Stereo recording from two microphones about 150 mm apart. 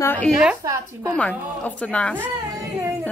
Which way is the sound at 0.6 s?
20° right (ahead or behind).